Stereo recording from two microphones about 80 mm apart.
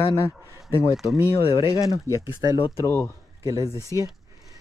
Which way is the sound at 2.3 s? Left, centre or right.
Left.